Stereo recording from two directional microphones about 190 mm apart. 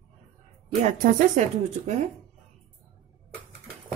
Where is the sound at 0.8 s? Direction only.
40° right (ahead or behind).